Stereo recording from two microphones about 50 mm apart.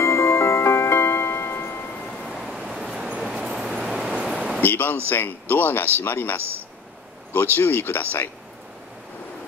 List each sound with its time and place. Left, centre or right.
0.0 s music: left
2.4 s vehicle: centre
4.3 s a sound: centre
4.6 s a sound: left
5.1 s speech: left
7.5 s speech: left